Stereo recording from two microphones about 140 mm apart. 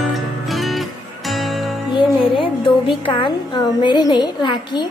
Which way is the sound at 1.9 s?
35° left (ahead or behind).